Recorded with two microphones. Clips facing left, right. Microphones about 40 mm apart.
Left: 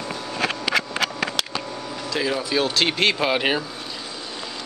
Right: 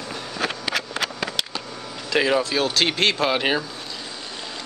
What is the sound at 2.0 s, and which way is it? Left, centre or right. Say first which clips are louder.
Speech: right 5 dB; right.